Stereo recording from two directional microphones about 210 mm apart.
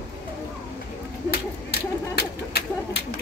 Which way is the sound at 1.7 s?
50° left (ahead or behind).